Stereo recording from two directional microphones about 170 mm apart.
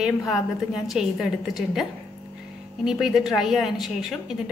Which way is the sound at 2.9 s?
Centre (ahead or behind).